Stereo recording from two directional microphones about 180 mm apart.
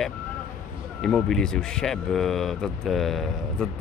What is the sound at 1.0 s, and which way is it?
Speech, 5° left (ahead or behind).